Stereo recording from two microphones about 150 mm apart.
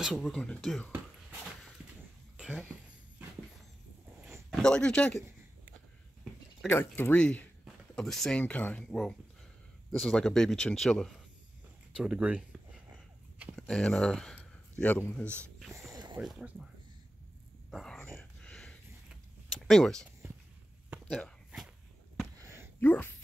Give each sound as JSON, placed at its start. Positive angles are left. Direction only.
{"t": 0.0, "sound": "speech", "side_deg": 0}
{"t": 4.5, "sound": "speech", "side_deg": 5}
{"t": 6.7, "sound": "speech", "side_deg": 15}
{"t": 11.9, "sound": "a sound", "side_deg": -5}
{"t": 13.6, "sound": "speech", "side_deg": 5}
{"t": 15.9, "sound": "a sound", "side_deg": -30}
{"t": 16.2, "sound": "speech", "side_deg": 0}
{"t": 17.6, "sound": "a sound", "side_deg": 0}
{"t": 22.8, "sound": "speech", "side_deg": 15}